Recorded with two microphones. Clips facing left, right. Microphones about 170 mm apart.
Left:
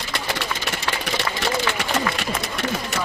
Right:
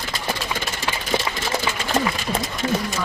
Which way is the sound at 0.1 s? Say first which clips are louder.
Even; 70° left (ahead or behind).